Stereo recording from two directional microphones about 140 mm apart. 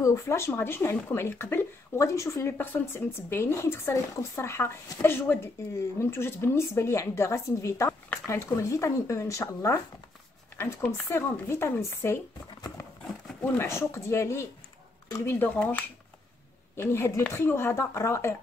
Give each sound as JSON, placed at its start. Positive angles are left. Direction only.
{"t": 0.0, "sound": "a woman's voice", "side_deg": 20}
{"t": 13.4, "sound": "a woman's voice", "side_deg": 20}